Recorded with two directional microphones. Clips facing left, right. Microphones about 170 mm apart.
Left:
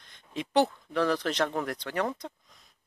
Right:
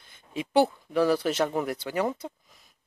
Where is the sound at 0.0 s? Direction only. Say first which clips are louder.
Right 2 dB; 5° right (ahead or behind).